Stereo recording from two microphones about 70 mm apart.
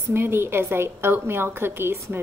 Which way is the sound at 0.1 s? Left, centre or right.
Right.